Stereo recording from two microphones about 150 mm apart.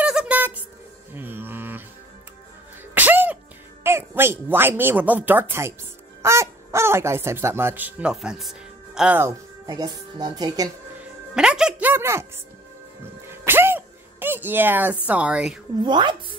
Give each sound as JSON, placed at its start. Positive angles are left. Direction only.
{"t": 0.0, "sound": "squeak", "side_deg": -5}
{"t": 1.1, "sound": "music", "side_deg": -15}
{"t": 2.9, "sound": "sneeze", "side_deg": -10}
{"t": 3.8, "sound": "speech", "side_deg": -15}
{"t": 9.7, "sound": "speech", "side_deg": -25}
{"t": 11.3, "sound": "speech", "side_deg": -5}
{"t": 13.5, "sound": "a sound", "side_deg": -15}
{"t": 15.0, "sound": "speech", "side_deg": -10}
{"t": 15.8, "sound": "speech", "side_deg": -30}